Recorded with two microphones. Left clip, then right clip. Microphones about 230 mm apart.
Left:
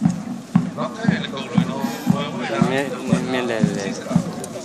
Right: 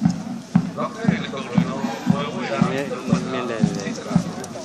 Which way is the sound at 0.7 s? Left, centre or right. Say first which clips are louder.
Left 1 dB; left.